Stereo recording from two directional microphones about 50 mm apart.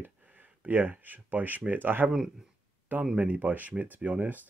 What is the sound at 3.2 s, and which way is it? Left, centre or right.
Speech, right.